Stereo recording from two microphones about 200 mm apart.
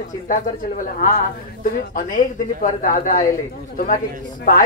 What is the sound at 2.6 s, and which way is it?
Speech, 40° left (ahead or behind).